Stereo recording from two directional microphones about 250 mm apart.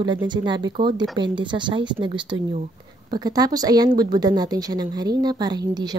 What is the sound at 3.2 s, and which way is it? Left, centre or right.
Speech, centre.